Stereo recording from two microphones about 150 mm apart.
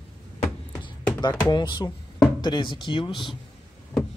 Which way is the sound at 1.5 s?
30° left (ahead or behind).